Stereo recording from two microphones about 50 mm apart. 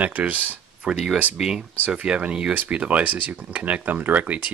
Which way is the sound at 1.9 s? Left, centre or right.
Right.